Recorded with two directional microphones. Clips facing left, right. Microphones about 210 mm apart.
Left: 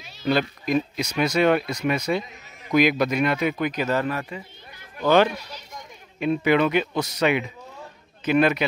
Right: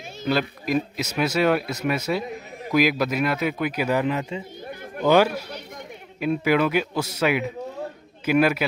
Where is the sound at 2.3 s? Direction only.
60° right (ahead or behind).